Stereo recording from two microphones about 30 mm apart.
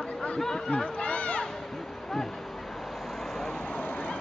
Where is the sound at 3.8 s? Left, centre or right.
Left.